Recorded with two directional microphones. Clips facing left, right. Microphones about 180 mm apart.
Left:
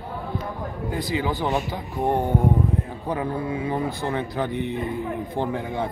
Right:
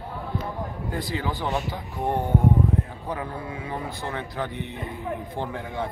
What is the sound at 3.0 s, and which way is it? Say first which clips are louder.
Speech: left 6 dB; 25° left (ahead or behind).